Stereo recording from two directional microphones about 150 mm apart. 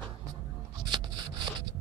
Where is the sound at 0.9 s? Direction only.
30° right (ahead or behind).